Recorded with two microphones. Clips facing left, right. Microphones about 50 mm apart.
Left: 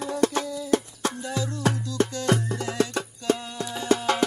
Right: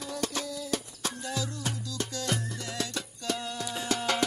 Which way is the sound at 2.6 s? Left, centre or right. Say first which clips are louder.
Left 9 dB; left.